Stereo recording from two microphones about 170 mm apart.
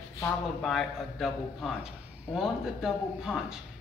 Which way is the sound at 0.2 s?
5° left (ahead or behind).